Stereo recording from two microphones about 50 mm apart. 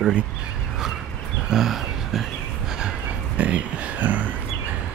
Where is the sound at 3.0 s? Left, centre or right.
Right.